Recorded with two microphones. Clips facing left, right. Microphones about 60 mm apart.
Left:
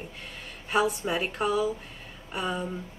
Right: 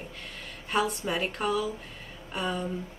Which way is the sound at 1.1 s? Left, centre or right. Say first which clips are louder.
Left 1 dB; centre.